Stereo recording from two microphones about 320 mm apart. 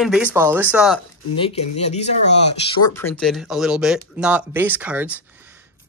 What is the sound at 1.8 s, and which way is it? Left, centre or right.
Speech, left.